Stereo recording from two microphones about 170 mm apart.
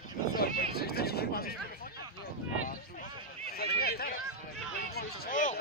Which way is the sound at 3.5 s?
65° left (ahead or behind).